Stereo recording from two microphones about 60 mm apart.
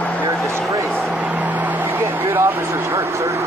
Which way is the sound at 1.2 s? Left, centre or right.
Right.